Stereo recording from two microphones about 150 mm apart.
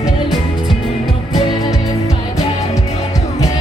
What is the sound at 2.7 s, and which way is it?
Music, 20° left (ahead or behind).